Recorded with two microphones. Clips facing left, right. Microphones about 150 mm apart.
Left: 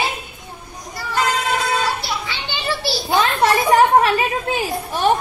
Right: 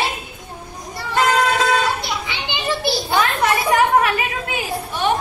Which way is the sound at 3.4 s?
30° left (ahead or behind).